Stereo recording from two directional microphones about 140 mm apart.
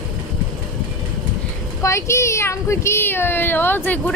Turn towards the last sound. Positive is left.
turn(degrees=15)  # may be behind; listen again after turning